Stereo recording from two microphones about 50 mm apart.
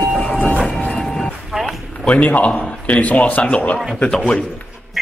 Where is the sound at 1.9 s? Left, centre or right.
Left.